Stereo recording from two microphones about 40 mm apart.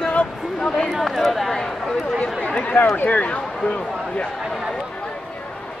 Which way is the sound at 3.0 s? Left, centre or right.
Left.